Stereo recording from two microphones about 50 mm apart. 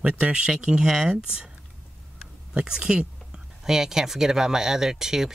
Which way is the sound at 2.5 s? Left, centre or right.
Centre.